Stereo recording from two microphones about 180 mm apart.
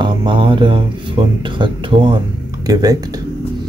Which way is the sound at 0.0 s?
25° right (ahead or behind).